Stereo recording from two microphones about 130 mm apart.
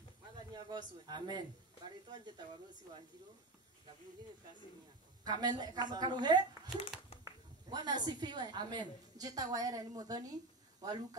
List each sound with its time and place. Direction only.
0.5 s a woman's voice: 35° right (ahead or behind)
5.2 s a woman's voice: 30° right (ahead or behind)